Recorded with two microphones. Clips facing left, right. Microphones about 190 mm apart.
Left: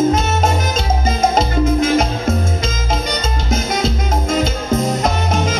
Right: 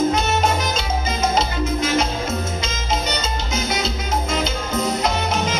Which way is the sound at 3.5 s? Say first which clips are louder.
Left 6 dB; 50° left (ahead or behind).